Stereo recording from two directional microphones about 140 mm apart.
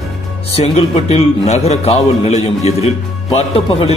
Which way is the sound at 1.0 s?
45° left (ahead or behind).